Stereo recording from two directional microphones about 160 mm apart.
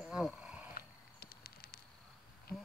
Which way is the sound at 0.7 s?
75° left (ahead or behind).